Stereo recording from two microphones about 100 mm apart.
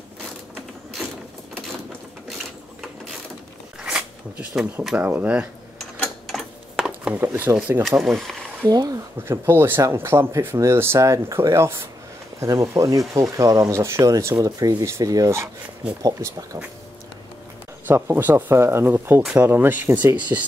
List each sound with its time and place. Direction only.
3.8 s shuffling cards: 5° right (ahead or behind)
4.9 s speech: 15° right (ahead or behind)
6.2 s a sound: 5° right (ahead or behind)
7.2 s speech: 20° right (ahead or behind)
8.2 s speech: 5° left (ahead or behind)
8.6 s speech: 40° right (ahead or behind)
9.5 s speech: 25° right (ahead or behind)
17.8 s speech: 25° right (ahead or behind)